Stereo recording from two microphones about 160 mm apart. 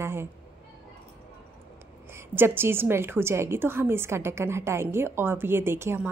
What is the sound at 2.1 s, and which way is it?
A woman's voice, 15° right (ahead or behind).